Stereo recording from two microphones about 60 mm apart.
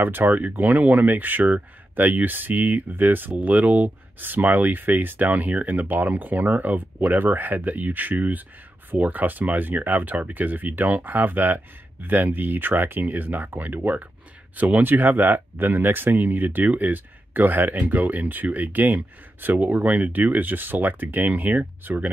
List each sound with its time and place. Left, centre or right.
0.0 s speech: right